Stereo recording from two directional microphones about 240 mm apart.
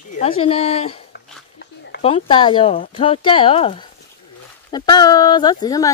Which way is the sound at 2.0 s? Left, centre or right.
Left.